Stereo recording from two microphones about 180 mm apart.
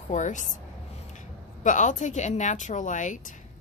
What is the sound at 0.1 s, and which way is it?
A woman's voice, 45° left (ahead or behind).